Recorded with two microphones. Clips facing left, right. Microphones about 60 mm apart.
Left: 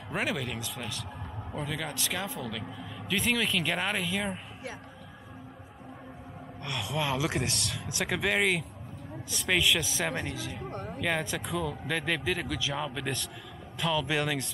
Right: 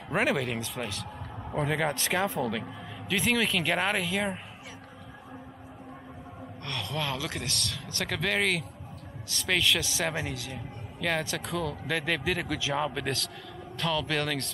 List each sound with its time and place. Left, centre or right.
0.1 s a man's voice: right
1.6 s a man's voice: right
3.1 s a man's voice: centre
6.6 s speech: centre
7.6 s a man's voice: centre